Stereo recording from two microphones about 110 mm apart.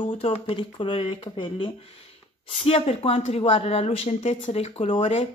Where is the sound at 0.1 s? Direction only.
65° left (ahead or behind).